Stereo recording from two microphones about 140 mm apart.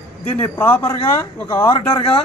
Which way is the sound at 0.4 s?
15° left (ahead or behind).